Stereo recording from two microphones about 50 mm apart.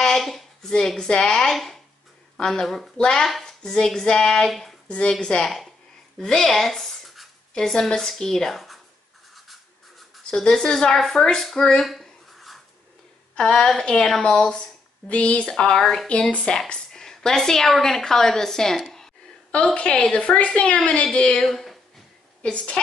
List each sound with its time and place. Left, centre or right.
0.0 s a woman's voice: centre
3.3 s speech: centre
4.5 s speech: centre
4.8 s a woman's voice: left; by 8.7 s centre
9.3 s a sound: centre
10.3 s speech: centre
11.8 s a sound: centre
13.4 s speech: centre
15.8 s speech: centre
16.1 s speech: left; by 19.0 s centre
19.5 s a woman's voice: left
21.4 s speech: centre
22.4 s a woman's voice: left